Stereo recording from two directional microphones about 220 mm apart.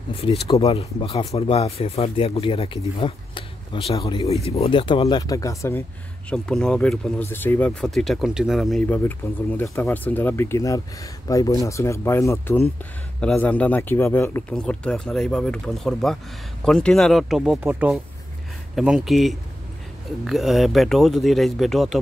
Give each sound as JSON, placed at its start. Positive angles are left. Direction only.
{"t": 0.2, "sound": "speech", "side_deg": 25}